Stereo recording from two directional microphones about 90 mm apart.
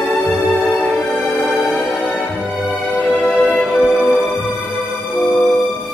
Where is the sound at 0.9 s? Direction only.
20° left (ahead or behind).